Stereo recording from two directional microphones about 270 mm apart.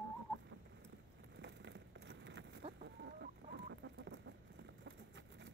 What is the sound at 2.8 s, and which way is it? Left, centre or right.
Chicken, right.